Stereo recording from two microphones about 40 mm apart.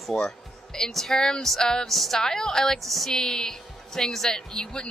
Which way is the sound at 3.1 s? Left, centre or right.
Centre.